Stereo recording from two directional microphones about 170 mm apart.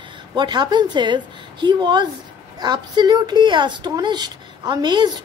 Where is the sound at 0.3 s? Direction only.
25° right (ahead or behind).